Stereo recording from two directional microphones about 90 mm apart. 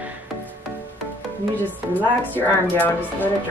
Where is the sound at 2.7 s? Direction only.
20° left (ahead or behind).